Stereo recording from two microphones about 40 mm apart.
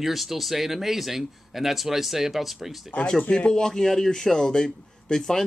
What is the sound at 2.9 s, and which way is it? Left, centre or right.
Speech, left.